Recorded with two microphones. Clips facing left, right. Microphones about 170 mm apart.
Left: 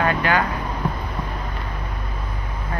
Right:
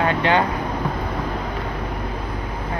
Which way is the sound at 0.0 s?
25° right (ahead or behind).